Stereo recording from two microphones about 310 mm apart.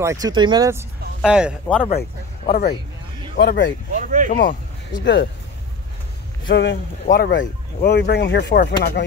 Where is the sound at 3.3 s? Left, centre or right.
Left.